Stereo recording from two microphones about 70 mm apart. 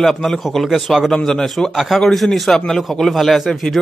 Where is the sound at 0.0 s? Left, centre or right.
Centre.